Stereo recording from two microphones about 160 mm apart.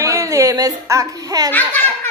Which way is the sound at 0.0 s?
20° right (ahead or behind).